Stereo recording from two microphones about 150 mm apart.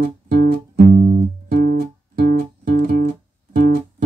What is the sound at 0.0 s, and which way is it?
Music, 65° right (ahead or behind).